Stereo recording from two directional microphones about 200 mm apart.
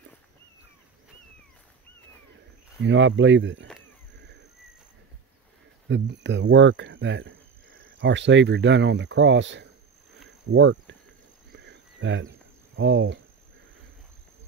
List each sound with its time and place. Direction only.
2.8 s speech: 65° right (ahead or behind)
5.9 s speech: 65° right (ahead or behind)
11.5 s a sound: 60° right (ahead or behind)